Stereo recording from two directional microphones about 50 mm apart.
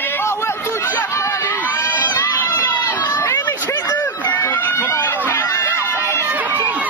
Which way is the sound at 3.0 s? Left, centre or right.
Left.